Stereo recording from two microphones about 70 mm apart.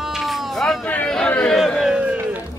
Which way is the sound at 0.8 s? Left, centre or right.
Left.